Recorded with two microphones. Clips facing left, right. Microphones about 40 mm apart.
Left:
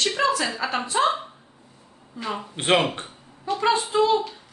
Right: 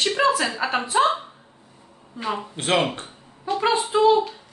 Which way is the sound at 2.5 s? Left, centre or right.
Left.